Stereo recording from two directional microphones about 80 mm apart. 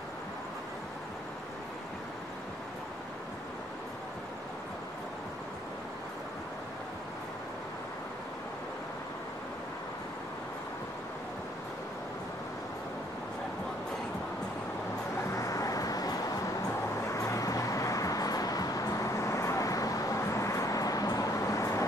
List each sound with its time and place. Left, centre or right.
15.2 s vehicle: left
17.0 s vehicle: left